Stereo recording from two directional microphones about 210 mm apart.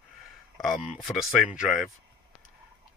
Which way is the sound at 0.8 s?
Centre (ahead or behind).